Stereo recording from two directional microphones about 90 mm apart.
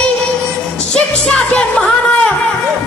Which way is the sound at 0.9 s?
10° left (ahead or behind).